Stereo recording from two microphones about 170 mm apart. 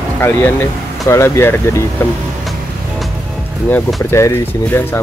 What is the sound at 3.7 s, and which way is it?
Speech, 10° left (ahead or behind).